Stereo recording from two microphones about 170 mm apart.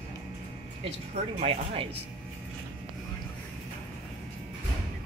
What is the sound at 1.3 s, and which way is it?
Speech, 30° right (ahead or behind).